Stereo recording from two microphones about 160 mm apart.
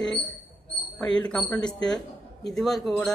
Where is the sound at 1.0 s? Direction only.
10° left (ahead or behind).